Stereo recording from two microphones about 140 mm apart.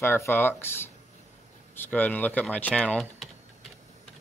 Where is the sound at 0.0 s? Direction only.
15° left (ahead or behind).